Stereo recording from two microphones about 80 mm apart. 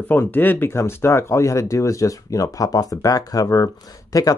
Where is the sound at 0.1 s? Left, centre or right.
Left.